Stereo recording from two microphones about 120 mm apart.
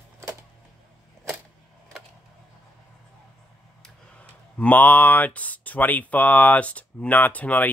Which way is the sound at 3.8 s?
10° left (ahead or behind).